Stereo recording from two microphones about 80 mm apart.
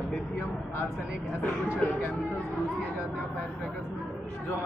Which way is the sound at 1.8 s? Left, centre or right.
Centre.